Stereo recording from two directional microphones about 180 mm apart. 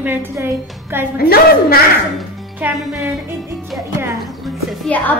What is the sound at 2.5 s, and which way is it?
Speech, 10° right (ahead or behind).